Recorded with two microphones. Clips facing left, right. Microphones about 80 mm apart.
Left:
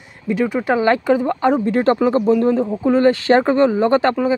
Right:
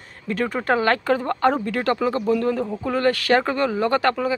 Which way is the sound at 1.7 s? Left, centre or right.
Left.